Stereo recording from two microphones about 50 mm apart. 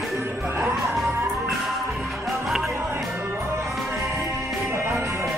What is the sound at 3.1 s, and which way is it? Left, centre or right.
Music, right.